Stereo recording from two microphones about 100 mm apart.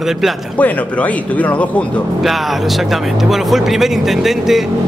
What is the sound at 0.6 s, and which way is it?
Speech, 15° left (ahead or behind).